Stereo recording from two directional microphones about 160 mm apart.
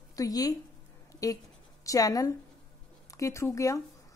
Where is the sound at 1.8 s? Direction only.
20° left (ahead or behind).